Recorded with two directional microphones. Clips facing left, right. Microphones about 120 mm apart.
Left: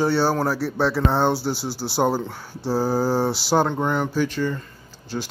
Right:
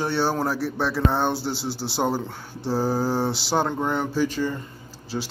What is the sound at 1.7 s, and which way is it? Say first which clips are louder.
Speech: left 1 dB; 65° right (ahead or behind).